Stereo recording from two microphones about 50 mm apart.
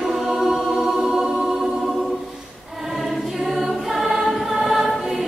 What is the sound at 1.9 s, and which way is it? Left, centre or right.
Choir, centre.